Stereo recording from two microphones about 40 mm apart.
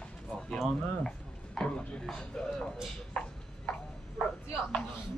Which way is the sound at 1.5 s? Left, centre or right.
Left.